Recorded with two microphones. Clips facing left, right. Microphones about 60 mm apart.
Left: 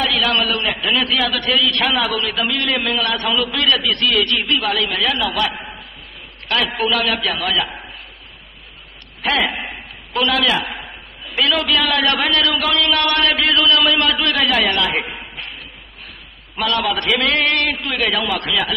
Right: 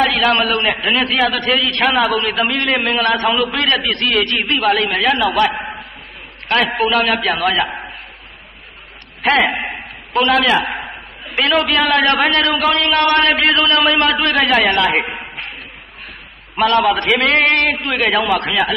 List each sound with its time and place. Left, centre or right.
0.0 s a sound: right
0.6 s a man's voice: right
9.4 s a man's voice: right
16.5 s a man's voice: right